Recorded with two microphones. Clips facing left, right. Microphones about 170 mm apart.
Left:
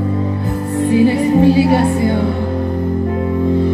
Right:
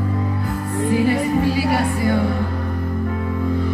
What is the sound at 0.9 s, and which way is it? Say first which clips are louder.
Music: left 6 dB; 25° left (ahead or behind).